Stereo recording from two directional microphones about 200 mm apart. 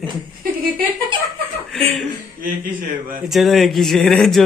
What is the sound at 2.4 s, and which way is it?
Speech, 45° right (ahead or behind).